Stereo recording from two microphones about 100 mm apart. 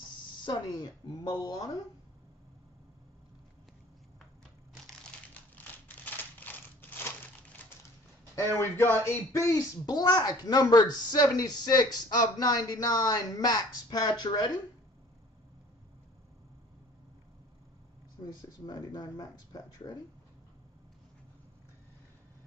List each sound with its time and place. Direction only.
0.5 s speech: 40° left (ahead or behind)
4.7 s typing: centre (ahead or behind)
5.3 s a sound: 15° left (ahead or behind)
8.5 s speech: 20° left (ahead or behind); by 14.6 s 45° left (ahead or behind)
18.2 s speech: 45° left (ahead or behind)